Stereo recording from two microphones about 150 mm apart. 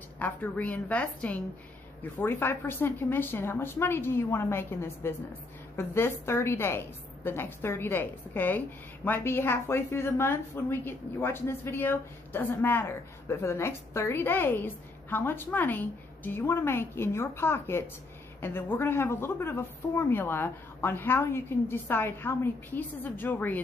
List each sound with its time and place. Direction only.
0.2 s a woman's voice: 10° left (ahead or behind)